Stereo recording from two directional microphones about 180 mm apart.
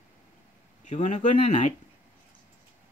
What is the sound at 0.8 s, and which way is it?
Speech, 40° left (ahead or behind).